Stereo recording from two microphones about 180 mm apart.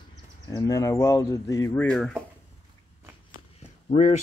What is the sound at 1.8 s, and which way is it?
Speech, 5° left (ahead or behind).